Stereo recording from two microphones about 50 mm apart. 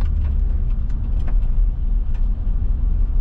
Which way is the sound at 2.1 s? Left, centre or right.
Centre.